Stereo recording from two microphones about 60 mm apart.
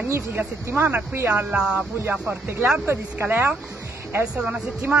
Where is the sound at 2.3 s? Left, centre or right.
Right.